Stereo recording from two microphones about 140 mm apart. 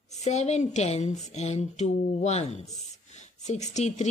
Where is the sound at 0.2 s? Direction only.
55° left (ahead or behind).